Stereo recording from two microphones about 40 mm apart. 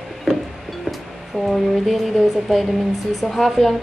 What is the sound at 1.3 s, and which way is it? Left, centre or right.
Speech, right.